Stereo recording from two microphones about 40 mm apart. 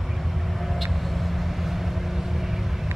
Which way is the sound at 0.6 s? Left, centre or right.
Centre.